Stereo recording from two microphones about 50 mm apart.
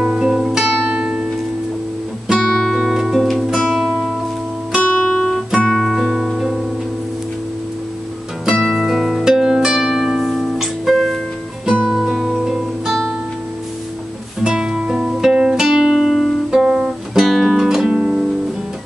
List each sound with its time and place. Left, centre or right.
0.0 s music: centre
2.3 s music: centre
4.9 s guitar: centre
5.6 s music: centre
8.7 s harp: centre
11.6 s music: centre
11.9 s music: centre
14.4 s music: centre
17.9 s music: right